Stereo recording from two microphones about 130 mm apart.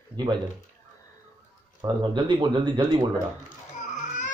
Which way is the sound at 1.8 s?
35° right (ahead or behind).